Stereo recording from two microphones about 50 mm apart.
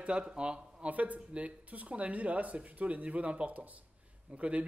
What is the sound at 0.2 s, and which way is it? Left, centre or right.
A man's voice, centre.